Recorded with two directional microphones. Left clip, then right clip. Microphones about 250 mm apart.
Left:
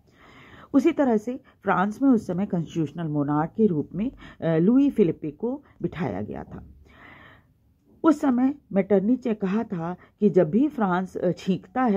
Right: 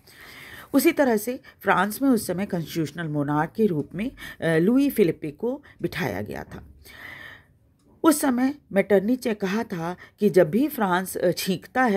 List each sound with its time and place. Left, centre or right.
0.3 s a woman's voice: right